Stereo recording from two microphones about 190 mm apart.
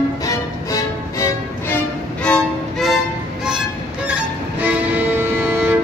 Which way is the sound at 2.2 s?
Centre (ahead or behind).